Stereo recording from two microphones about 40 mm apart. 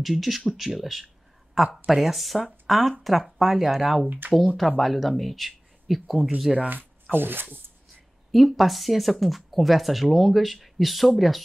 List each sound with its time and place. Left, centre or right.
0.0 s speech: centre
4.2 s speech: right
4.6 s speech: centre
6.7 s speech: right
8.3 s speech: centre